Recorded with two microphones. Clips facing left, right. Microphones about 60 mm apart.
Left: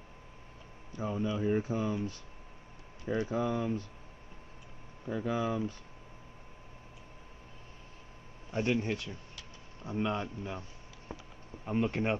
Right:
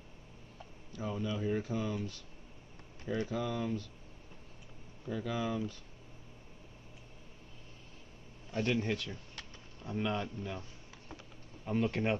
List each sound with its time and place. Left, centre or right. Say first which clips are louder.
0.9 s speech: left 3 dB; left
3.2 s speech: left 4 dB; left
5.0 s speech: left 3 dB; left
8.5 s speech: left 2 dB; left
9.8 s a man's voice: left 2 dB; centre
10.2 s speech: left 1 dB; centre
11.1 s typing: left 5 dB; left
11.6 s speech: left 1 dB; left